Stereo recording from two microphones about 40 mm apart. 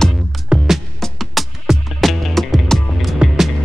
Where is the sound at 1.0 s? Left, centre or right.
Centre.